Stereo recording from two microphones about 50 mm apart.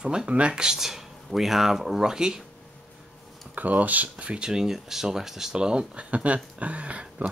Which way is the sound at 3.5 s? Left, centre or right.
Right.